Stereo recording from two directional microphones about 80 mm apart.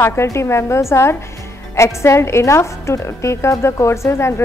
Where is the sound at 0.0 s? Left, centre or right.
Left.